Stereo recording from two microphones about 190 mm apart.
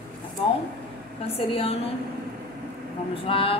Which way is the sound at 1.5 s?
30° left (ahead or behind).